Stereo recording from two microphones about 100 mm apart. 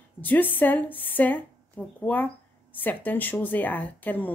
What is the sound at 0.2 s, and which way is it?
A woman's voice, 20° left (ahead or behind).